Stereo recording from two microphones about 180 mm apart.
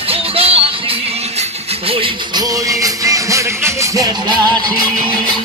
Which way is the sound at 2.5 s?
20° right (ahead or behind).